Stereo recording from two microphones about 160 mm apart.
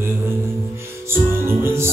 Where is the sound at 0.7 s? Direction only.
15° right (ahead or behind).